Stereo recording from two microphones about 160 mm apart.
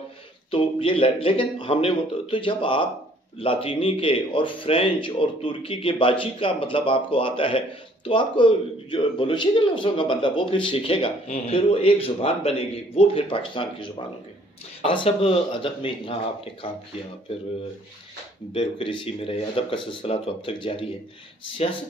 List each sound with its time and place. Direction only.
0.5 s speech: 35° left (ahead or behind)
18.5 s speech: 35° left (ahead or behind)